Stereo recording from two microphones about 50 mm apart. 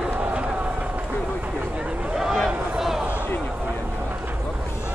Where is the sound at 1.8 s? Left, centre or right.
Centre.